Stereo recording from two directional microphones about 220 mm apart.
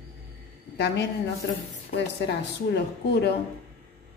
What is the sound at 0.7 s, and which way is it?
A woman's voice, 50° left (ahead or behind).